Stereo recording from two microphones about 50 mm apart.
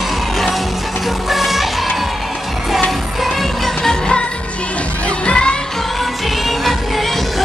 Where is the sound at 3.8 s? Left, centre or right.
Centre.